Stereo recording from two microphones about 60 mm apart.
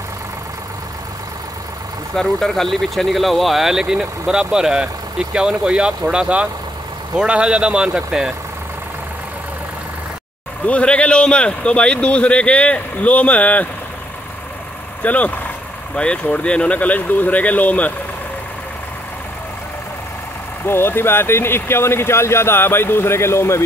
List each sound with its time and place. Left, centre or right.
2.1 s speech: centre
10.6 s a man's voice: left
15.0 s a man's voice: left
20.6 s speech: left